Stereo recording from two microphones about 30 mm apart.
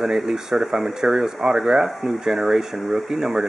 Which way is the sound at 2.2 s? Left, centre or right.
Centre.